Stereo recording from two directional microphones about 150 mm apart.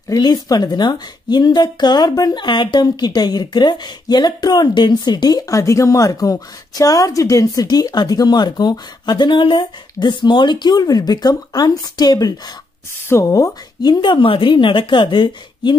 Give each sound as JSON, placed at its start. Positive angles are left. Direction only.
{"t": 0.1, "sound": "a woman's voice", "side_deg": 25}